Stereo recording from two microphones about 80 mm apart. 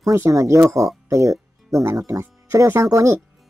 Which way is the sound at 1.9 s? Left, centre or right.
Right.